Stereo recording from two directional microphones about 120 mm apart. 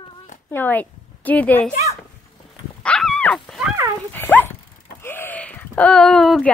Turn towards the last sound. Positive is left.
turn(degrees=5)  # may be behind; listen again after turning